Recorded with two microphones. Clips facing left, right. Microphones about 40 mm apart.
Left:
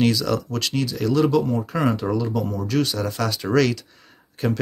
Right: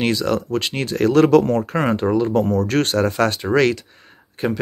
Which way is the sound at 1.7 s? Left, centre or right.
Right.